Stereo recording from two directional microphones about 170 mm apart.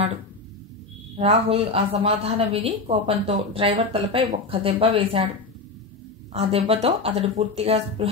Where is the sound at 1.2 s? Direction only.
35° right (ahead or behind).